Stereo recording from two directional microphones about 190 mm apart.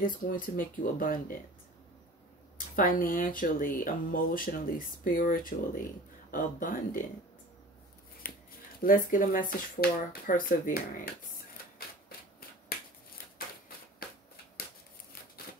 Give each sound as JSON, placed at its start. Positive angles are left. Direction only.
{"t": 0.0, "sound": "speech", "side_deg": 45}
{"t": 2.5, "sound": "speech", "side_deg": 45}
{"t": 8.8, "sound": "speech", "side_deg": 45}
{"t": 13.7, "sound": "typewriter", "side_deg": 50}